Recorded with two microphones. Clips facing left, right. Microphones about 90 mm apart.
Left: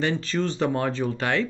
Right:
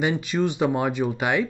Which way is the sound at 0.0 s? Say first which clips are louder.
Right 2 dB; 15° right (ahead or behind).